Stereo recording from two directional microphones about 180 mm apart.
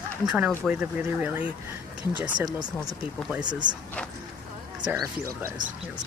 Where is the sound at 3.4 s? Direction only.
25° right (ahead or behind).